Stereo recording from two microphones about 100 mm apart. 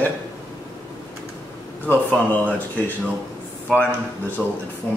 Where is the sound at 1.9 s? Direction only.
20° left (ahead or behind).